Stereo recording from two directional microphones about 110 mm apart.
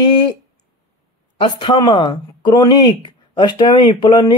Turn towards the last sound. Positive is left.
turn(degrees=45)  # may be behind; listen again after turning